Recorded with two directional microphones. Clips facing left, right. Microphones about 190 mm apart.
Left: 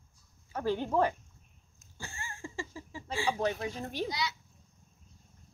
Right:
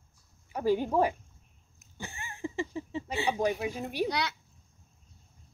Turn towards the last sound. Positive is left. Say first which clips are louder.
# right 4 dB
turn(degrees=-60)  # may be behind; listen again after turning